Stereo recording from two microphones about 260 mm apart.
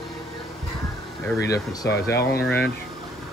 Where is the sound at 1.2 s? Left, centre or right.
Centre.